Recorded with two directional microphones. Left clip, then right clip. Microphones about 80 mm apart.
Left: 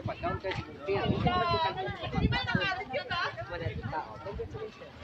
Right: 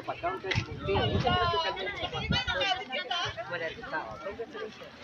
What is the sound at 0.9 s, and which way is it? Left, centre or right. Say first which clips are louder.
Speech: right 2 dB; centre.